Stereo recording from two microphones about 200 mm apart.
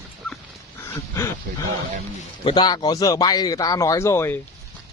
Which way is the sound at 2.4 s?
20° left (ahead or behind).